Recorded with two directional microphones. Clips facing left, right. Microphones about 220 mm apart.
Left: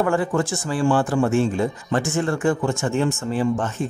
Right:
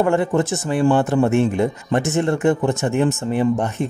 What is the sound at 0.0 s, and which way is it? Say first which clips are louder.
Speech: right 3 dB; 25° right (ahead or behind).